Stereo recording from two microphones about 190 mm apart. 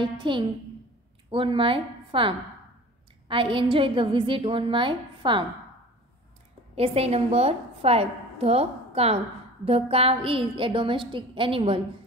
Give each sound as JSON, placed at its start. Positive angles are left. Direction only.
{"t": 0.0, "sound": "a woman's voice", "side_deg": -25}
{"t": 6.7, "sound": "a woman's voice", "side_deg": -30}